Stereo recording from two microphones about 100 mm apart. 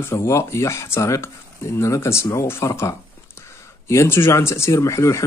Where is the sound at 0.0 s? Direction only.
25° left (ahead or behind).